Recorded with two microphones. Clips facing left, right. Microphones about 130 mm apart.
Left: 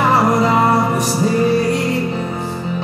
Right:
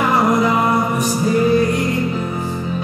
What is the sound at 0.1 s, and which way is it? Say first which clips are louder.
Music: left 1 dB; 35° left (ahead or behind).